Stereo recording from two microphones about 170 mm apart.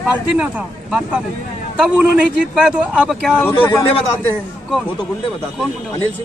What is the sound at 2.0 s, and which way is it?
A man's voice, 5° right (ahead or behind).